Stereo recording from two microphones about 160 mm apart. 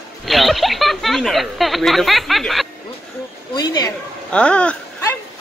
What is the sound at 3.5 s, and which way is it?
Speech, 25° left (ahead or behind).